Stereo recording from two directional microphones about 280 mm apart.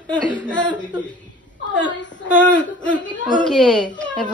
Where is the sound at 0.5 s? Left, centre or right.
Centre.